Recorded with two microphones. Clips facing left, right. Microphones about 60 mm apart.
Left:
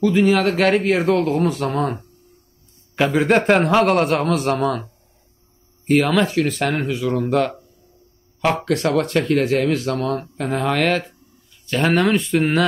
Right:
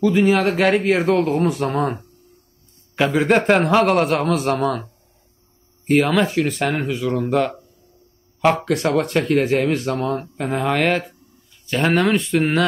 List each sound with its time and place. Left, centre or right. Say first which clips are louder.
0.0 s speech: even; centre
3.0 s a man's voice: even; centre
8.6 s speech: even; centre
9.5 s a man's voice: even; centre